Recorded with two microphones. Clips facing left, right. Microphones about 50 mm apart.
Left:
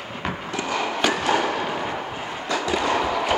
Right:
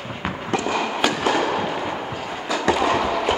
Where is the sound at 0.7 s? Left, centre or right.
Centre.